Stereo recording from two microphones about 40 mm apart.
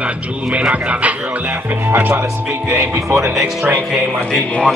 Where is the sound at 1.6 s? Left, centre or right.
Right.